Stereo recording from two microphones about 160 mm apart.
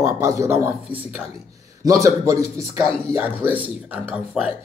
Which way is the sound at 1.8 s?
20° right (ahead or behind).